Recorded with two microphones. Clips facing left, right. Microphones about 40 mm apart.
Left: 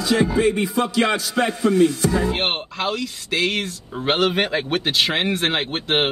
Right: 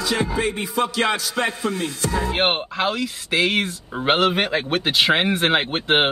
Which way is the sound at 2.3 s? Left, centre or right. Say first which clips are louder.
Right 2 dB; centre.